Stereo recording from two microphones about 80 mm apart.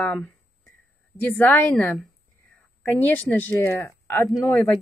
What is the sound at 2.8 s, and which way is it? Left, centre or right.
Speech, left.